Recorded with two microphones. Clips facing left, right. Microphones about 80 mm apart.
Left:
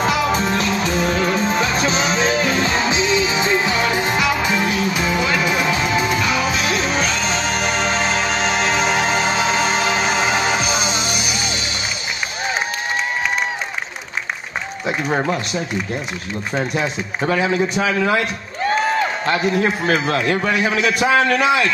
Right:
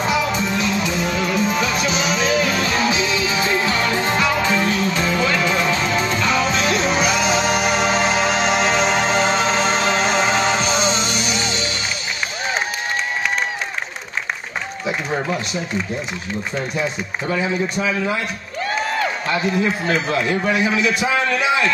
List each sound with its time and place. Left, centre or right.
0.0 s music: left; by 11.5 s centre
17.3 s a man's voice: left
19.2 s a man's voice: left